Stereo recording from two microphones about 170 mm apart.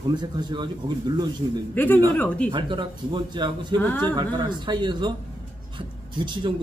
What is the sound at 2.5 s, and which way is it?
Speech, 30° right (ahead or behind).